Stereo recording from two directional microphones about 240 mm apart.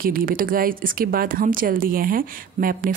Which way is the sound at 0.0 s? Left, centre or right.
Right.